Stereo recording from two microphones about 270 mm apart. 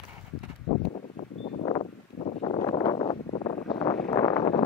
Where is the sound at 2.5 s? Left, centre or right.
Centre.